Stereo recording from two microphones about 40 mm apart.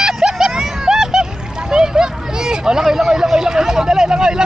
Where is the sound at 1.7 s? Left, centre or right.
Centre.